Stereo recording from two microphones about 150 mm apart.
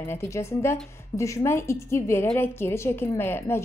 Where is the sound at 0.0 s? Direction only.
15° left (ahead or behind).